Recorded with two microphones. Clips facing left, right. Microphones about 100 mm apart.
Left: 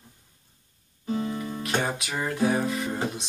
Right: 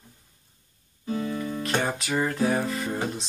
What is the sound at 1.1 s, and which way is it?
Music, 30° left (ahead or behind).